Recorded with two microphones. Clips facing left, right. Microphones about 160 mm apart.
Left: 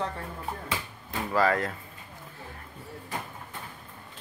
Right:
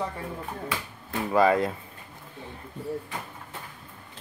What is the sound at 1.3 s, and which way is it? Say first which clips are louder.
Speech: right 4 dB; 20° right (ahead or behind).